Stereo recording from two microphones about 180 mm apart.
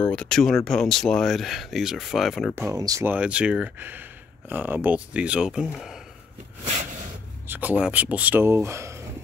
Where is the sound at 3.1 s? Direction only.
5° right (ahead or behind).